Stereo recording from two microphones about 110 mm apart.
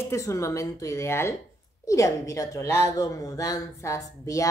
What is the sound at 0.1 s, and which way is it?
A woman's voice, 30° left (ahead or behind).